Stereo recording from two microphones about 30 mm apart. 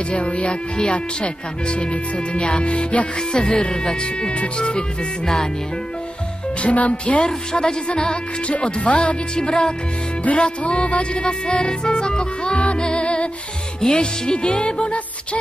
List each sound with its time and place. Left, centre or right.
0.1 s music: left
3.3 s music: left
4.7 s music: left
6.6 s speech: left
7.2 s music: left
7.9 s music: left
8.8 s speech: left
9.4 s music: left
10.2 s music: left
13.7 s music: left